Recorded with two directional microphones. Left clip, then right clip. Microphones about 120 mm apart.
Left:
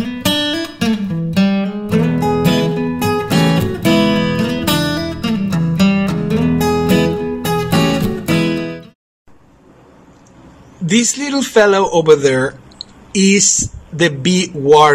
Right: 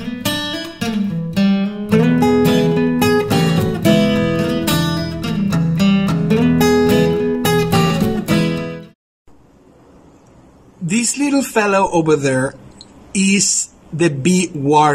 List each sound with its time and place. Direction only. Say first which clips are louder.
0.0 s music: left 5 dB; centre (ahead or behind)
10.9 s speech: left 2 dB; 15° right (ahead or behind)